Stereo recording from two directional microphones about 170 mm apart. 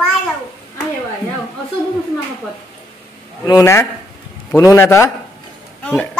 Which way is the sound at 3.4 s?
20° left (ahead or behind).